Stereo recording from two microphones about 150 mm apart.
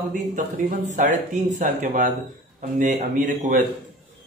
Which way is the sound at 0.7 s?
60° right (ahead or behind).